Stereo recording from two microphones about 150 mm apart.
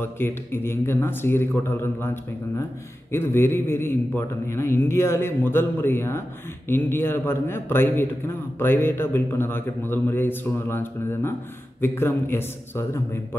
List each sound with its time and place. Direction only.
0.0 s a man's voice: 15° left (ahead or behind)